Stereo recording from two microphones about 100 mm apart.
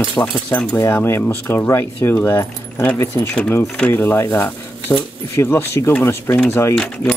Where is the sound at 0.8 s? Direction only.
25° left (ahead or behind).